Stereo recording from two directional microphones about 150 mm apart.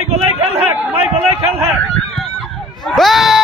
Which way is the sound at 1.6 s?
Centre (ahead or behind).